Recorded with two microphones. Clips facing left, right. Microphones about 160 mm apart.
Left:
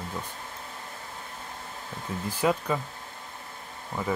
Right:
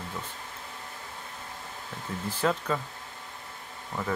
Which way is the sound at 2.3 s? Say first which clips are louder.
Left 2 dB; 10° left (ahead or behind).